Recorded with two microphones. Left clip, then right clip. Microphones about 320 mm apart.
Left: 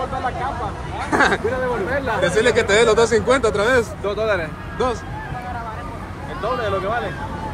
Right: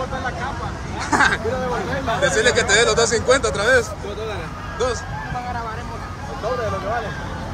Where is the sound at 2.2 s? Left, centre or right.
Left.